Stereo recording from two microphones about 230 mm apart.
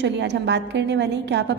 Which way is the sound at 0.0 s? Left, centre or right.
Right.